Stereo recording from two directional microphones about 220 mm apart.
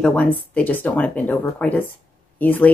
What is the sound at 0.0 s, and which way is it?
Speech, 5° left (ahead or behind).